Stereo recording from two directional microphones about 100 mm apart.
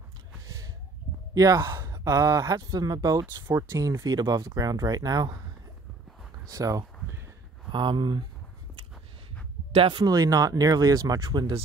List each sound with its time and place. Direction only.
1.3 s speech: 35° right (ahead or behind)
6.5 s speech: 35° right (ahead or behind)
7.7 s speech: 50° right (ahead or behind)
9.7 s speech: 60° right (ahead or behind)
10.0 s speech: 40° right (ahead or behind)